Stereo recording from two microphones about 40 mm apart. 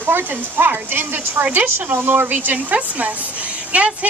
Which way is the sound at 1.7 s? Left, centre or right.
Right.